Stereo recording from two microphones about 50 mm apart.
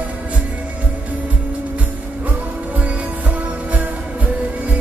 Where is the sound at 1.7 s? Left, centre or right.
Right.